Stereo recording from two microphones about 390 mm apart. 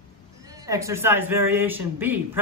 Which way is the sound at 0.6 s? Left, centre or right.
Centre.